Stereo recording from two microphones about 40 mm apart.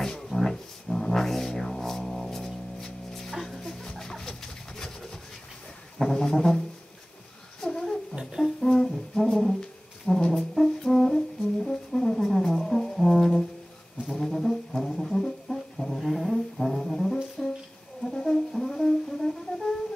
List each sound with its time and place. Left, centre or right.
0.0 s music: centre
5.9 s brass instrument: centre
7.6 s a sound: centre
8.5 s music: centre
10.3 s brass instrument: centre
15.1 s music: centre
15.5 s brass instrument: centre
18.1 s music: centre